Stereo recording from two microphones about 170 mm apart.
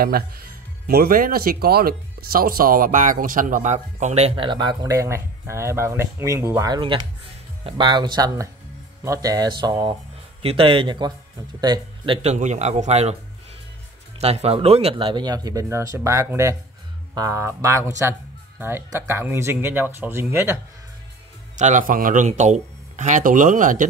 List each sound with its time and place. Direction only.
0.0 s speech: 65° right (ahead or behind); by 12.2 s 25° right (ahead or behind)
12.2 s a man's voice: 40° right (ahead or behind)
14.2 s speech: 40° right (ahead or behind); by 20.5 s 15° right (ahead or behind)
21.5 s speech: 45° right (ahead or behind)